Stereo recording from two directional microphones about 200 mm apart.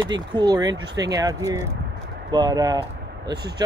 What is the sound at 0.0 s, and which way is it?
Speech, 20° right (ahead or behind).